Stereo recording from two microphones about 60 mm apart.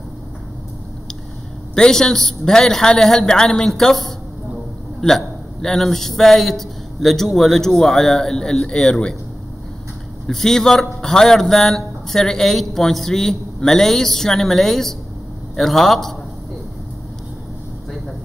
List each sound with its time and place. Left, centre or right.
1.8 s a man's voice: centre
10.2 s a man's voice: centre